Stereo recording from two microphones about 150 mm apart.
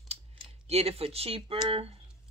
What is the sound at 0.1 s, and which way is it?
Speech, 45° right (ahead or behind).